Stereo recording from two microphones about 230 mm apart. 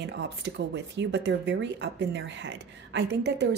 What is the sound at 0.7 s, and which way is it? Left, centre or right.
Speech, right.